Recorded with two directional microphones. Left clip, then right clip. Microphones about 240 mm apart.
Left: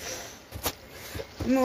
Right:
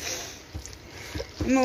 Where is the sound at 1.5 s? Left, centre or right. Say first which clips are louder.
Right 2 dB; centre.